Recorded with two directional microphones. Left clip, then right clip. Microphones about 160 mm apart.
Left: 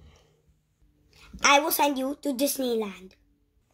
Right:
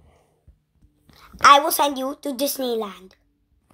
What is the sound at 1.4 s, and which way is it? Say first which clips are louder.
A woman's voice: right 7 dB; 20° left (ahead or behind).